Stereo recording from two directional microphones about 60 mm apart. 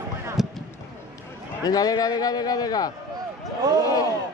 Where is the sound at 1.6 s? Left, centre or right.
Left.